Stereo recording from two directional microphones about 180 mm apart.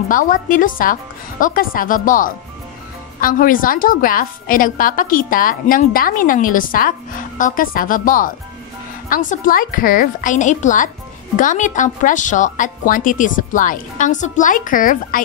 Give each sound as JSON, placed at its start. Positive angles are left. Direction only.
{"t": 0.1, "sound": "a woman's voice", "side_deg": 50}